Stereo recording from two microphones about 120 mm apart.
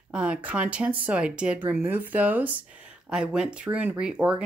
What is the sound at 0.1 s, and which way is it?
Speech, 10° right (ahead or behind).